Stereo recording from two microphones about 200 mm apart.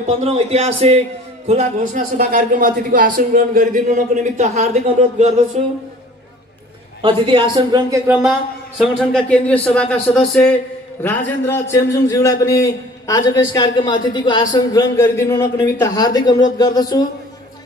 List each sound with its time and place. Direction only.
0.2 s speech: 30° right (ahead or behind)
7.0 s speech: 25° right (ahead or behind)
8.1 s a man's voice: 5° right (ahead or behind); by 16.8 s 20° left (ahead or behind)